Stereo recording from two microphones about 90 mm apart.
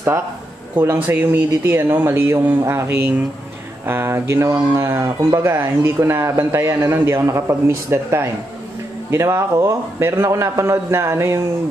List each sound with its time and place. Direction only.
0.7 s speech: 20° right (ahead or behind)